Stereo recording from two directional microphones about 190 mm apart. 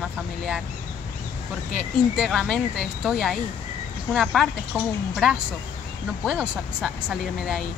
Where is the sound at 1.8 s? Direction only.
Centre (ahead or behind).